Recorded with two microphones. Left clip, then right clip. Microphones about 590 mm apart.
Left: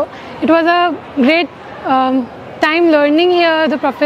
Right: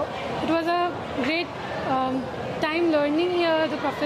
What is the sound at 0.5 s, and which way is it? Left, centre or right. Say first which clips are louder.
A woman's voice: left 14 dB; left.